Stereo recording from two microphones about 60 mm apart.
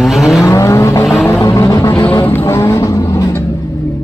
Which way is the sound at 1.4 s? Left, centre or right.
Left.